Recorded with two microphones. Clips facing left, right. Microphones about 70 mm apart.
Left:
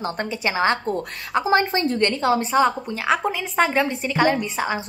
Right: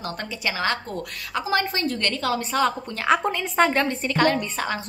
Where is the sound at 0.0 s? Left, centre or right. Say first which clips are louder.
Left 4 dB; left.